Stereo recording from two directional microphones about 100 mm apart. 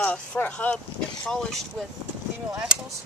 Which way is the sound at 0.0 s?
15° left (ahead or behind).